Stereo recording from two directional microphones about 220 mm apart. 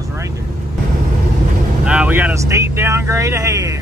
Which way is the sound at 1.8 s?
5° right (ahead or behind).